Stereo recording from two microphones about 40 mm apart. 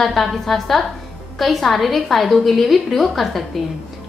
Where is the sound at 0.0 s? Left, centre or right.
Centre.